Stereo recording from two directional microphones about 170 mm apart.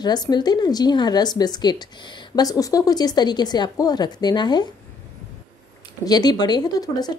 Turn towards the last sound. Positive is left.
turn(degrees=20)  # may be behind; listen again after turning